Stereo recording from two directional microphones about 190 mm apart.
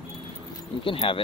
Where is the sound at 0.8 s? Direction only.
30° left (ahead or behind).